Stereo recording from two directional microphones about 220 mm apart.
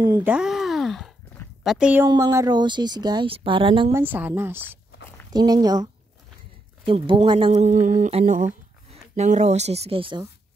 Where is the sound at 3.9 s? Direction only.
10° right (ahead or behind).